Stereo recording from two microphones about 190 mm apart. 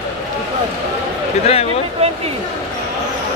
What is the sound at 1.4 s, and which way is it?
Speech, 30° left (ahead or behind).